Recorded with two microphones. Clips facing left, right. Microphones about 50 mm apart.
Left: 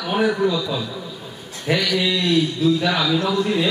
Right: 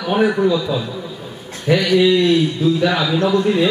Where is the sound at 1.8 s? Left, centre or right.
Right.